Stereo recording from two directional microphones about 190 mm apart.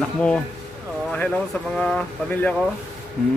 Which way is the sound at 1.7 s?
5° left (ahead or behind).